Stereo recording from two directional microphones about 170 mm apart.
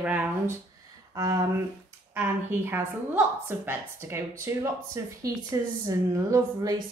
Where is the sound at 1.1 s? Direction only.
20° right (ahead or behind).